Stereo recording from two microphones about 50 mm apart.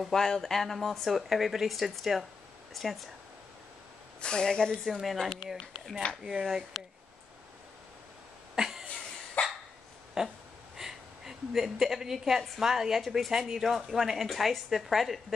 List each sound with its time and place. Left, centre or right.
0.1 s speech: centre
4.2 s a woman's voice: centre
4.9 s speech: centre
8.5 s a sound: centre
9.4 s cough: left
10.2 s a sound: centre
10.8 s a woman's voice: centre